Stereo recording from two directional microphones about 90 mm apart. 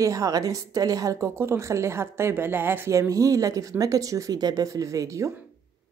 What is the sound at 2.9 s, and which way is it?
A woman's voice, 35° right (ahead or behind).